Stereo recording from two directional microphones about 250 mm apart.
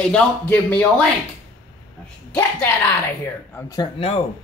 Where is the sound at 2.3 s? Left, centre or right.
Centre; by 4.2 s left.